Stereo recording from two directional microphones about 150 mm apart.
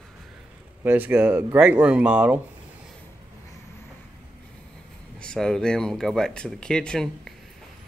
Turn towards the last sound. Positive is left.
turn(degrees=5)  # may be behind; listen again after turning